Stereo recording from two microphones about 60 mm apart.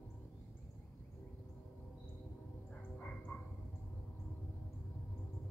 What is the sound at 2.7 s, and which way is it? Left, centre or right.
Frog, left.